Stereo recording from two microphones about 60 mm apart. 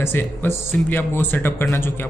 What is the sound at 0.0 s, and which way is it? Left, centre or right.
Speech, left.